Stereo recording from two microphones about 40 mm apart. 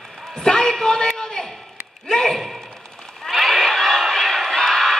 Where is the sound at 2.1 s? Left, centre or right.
Centre.